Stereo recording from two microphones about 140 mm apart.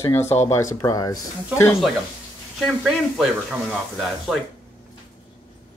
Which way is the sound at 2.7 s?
5° right (ahead or behind).